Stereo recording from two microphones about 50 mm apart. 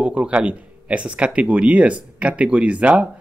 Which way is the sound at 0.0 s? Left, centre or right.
Right.